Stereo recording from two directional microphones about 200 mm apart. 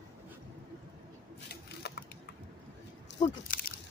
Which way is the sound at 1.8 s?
55° left (ahead or behind).